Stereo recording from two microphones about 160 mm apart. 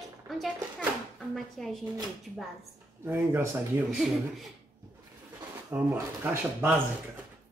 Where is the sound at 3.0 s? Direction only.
15° right (ahead or behind).